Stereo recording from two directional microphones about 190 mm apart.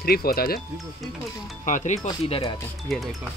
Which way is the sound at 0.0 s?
55° left (ahead or behind).